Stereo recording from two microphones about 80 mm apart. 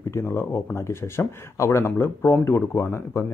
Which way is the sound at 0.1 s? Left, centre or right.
Left.